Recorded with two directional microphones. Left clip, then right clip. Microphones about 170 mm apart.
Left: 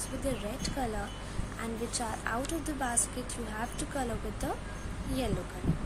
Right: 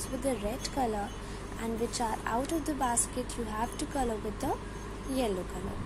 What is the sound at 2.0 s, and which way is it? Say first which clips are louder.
A woman's voice: right 1 dB; 10° right (ahead or behind).